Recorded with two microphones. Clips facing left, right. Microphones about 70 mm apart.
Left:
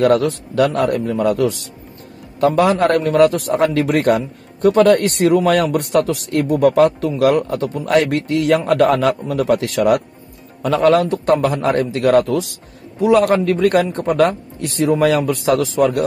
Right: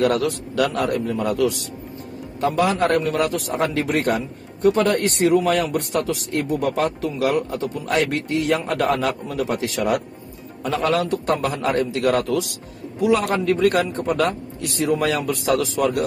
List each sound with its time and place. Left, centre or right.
0.0 s a man's voice: left
15.4 s a man's voice: left
15.8 s speech: left